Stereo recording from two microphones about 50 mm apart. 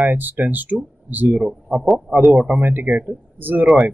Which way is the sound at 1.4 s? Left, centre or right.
Centre.